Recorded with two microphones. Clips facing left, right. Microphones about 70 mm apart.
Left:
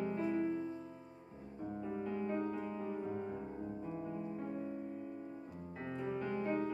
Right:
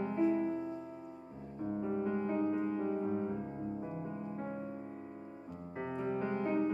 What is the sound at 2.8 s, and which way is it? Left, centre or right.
Music, right.